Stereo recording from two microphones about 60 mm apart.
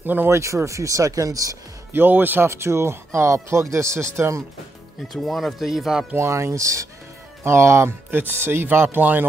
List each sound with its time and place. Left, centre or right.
0.0 s speech: right
0.3 s speech: right
1.9 s speech: right
2.5 s speech: right
5.1 s speech: centre
6.1 s speech: right
7.4 s speech: right
8.2 s speech: right